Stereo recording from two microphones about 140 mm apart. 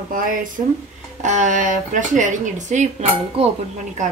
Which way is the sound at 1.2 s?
60° right (ahead or behind).